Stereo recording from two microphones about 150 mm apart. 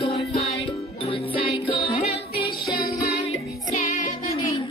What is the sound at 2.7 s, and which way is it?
Music, 85° left.